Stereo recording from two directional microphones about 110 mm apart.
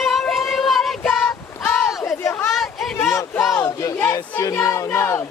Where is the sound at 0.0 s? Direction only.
Centre (ahead or behind).